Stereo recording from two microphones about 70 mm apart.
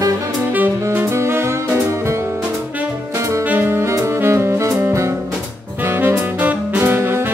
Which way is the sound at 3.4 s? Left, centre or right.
Right.